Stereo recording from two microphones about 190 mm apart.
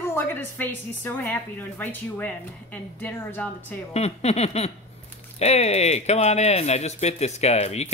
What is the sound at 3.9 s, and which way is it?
Speech, 35° left (ahead or behind).